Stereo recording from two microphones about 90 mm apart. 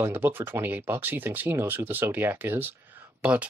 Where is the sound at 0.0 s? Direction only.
25° right (ahead or behind).